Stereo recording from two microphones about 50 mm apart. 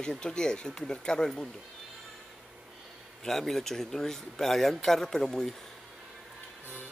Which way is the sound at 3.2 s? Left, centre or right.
Centre.